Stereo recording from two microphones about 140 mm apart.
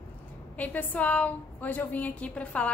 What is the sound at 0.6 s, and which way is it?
A woman's voice, 10° left (ahead or behind).